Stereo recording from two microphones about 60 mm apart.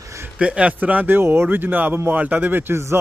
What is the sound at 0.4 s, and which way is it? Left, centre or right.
Speech, centre.